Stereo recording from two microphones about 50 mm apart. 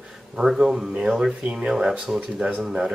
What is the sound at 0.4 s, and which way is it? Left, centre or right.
Speech, centre.